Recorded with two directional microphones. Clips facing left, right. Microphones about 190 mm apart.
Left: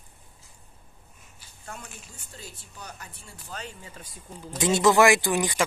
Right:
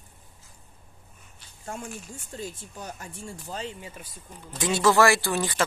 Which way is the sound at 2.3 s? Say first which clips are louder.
Right 8 dB; 45° right (ahead or behind).